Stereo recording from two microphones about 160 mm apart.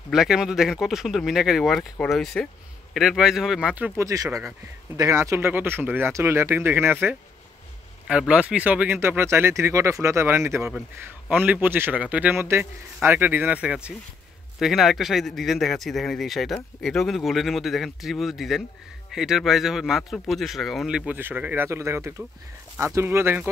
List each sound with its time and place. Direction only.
0.1 s a man's voice: 5° right (ahead or behind)